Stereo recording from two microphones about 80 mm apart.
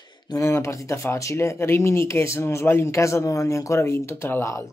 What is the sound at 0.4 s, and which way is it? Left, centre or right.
Speech, left.